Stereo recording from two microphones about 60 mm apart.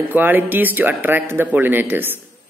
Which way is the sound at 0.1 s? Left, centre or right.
Right.